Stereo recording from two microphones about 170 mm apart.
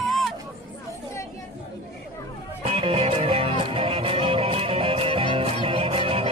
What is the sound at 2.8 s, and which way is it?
Music, 35° right (ahead or behind).